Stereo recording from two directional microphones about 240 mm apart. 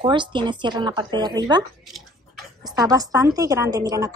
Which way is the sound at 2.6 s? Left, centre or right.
Centre.